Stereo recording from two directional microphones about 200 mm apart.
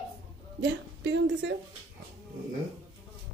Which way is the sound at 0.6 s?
65° right (ahead or behind).